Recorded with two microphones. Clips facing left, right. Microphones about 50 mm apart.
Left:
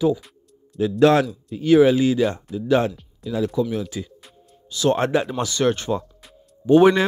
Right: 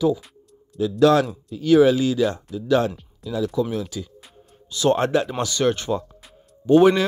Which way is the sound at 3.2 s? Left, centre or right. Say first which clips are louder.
Left 1 dB; centre.